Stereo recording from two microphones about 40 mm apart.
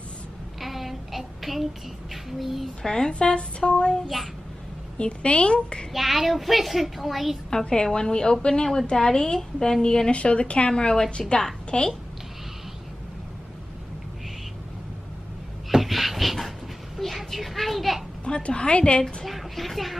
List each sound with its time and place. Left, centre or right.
0.6 s child singing: centre
2.4 s a child's voice: centre
2.8 s a woman's voice: centre
5.9 s a child's voice: centre
7.5 s a woman's voice: centre
15.7 s a sound: centre
17.2 s children playing: centre
18.2 s a woman's voice: left
19.2 s speech: centre